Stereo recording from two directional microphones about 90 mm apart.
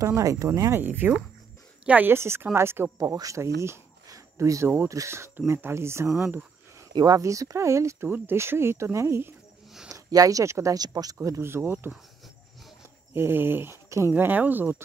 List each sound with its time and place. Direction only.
0.0 s speech: 40° right (ahead or behind)
0.7 s speech: 20° right (ahead or behind)
3.0 s speech: 40° right (ahead or behind)
6.1 s speech: 15° right (ahead or behind)
6.9 s speech: 55° right (ahead or behind)
7.2 s speech: 35° right (ahead or behind)
11.1 s speech: 35° right (ahead or behind)
13.1 s speech: 25° right (ahead or behind)